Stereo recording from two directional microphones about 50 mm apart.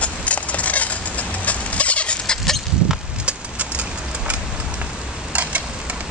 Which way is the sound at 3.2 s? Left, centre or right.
Right.